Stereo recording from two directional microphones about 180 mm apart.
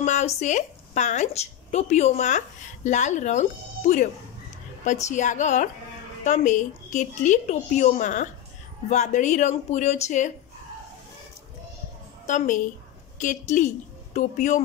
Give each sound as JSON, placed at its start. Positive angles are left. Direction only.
{"t": 0.0, "sound": "a sound", "side_deg": 40}
{"t": 0.4, "sound": "a woman's voice", "side_deg": 40}
{"t": 12.3, "sound": "a woman's voice", "side_deg": 45}